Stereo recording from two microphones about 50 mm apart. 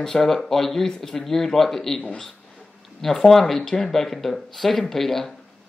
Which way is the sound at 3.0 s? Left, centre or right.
Centre.